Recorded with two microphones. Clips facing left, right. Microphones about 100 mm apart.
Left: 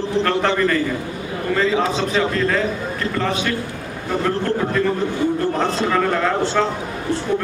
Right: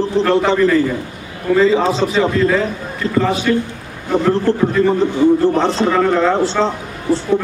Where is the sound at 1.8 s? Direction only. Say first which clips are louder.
Right 4 dB; 35° right (ahead or behind).